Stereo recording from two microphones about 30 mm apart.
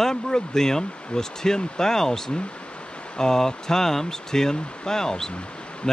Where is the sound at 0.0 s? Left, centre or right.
Centre.